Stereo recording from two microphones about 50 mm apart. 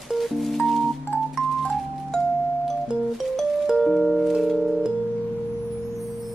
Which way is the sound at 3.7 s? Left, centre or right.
Centre.